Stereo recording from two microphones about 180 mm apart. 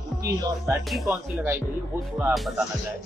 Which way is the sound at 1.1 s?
10° right (ahead or behind).